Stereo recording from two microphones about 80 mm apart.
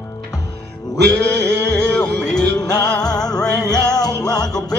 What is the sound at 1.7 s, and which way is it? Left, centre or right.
Music, centre.